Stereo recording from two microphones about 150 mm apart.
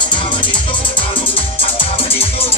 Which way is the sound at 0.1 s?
35° left (ahead or behind).